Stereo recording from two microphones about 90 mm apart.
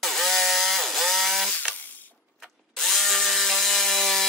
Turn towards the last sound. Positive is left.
turn(degrees=5)  # may be behind; listen again after turning